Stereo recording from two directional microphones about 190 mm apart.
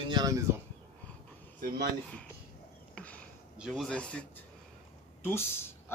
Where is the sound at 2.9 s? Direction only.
5° left (ahead or behind).